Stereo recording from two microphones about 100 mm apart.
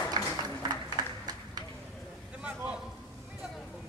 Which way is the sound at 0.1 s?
45° right (ahead or behind).